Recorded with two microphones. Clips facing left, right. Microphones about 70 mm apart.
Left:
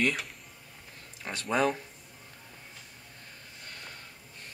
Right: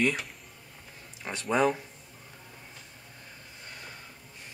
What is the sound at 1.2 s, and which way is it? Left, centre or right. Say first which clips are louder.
Speech: right 2 dB; centre.